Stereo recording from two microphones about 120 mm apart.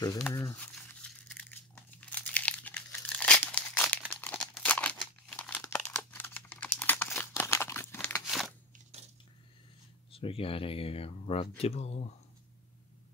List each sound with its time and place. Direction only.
0.3 s speech: 25° left (ahead or behind)
0.6 s crumpling: 10° left (ahead or behind)
8.3 s crunch: centre (ahead or behind)
10.1 s speech: 50° left (ahead or behind)